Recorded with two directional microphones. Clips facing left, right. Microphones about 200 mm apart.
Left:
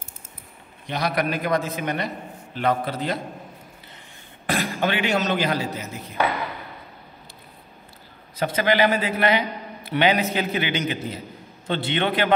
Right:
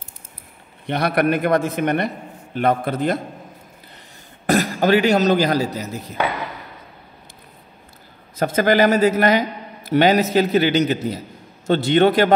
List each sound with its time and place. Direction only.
0.8 s a man's voice: 60° right (ahead or behind)
4.5 s a man's voice: 40° right (ahead or behind)
8.4 s a man's voice: 45° right (ahead or behind)